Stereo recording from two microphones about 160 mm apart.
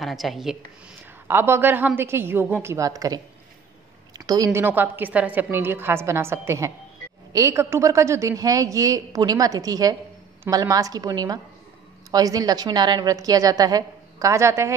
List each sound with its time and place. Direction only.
0.0 s speech: centre (ahead or behind)
1.2 s a woman's voice: 15° right (ahead or behind)